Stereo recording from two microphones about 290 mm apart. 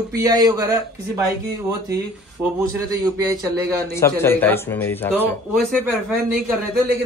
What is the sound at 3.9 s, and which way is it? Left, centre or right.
Speech, centre.